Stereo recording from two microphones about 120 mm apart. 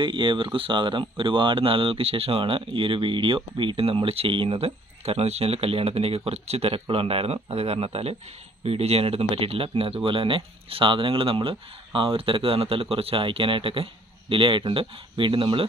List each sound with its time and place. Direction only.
0.0 s speech: 45° right (ahead or behind)